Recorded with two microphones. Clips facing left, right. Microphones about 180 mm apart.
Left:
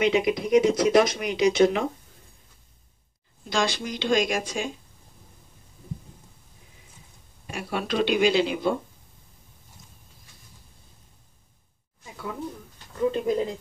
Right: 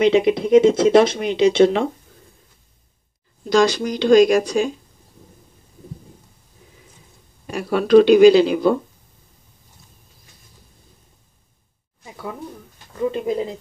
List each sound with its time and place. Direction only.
0.0 s speech: 30° right (ahead or behind)
3.4 s speech: 40° right (ahead or behind)
7.4 s speech: 40° right (ahead or behind)
13.3 s speech: 5° right (ahead or behind)